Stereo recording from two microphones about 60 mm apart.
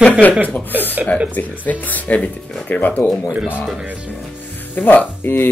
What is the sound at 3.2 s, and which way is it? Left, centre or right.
Speech, right.